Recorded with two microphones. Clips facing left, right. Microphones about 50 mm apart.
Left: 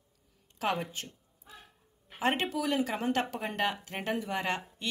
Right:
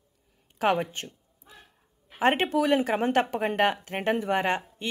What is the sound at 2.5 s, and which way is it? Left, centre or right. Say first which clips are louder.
Speech: right 7 dB; right.